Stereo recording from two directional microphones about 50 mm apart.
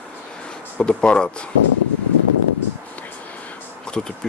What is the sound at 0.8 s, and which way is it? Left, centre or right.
Speech, left.